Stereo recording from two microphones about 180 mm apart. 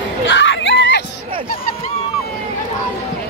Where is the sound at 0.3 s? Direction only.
90° left.